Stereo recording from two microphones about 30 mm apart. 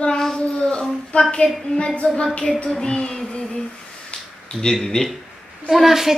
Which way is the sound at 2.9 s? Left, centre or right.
Left.